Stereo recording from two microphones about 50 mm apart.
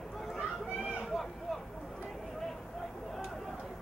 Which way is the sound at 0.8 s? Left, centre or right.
Centre.